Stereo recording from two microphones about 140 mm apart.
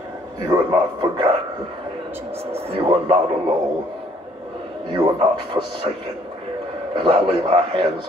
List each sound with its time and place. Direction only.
0.5 s a man's voice: 30° right (ahead or behind)
2.5 s a man's voice: 45° right (ahead or behind)
4.9 s a man's voice: 35° right (ahead or behind)
7.0 s a man's voice: 40° right (ahead or behind)